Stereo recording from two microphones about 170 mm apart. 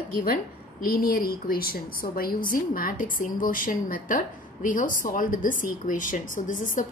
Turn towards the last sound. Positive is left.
turn(degrees=50)  # may be behind; listen again after turning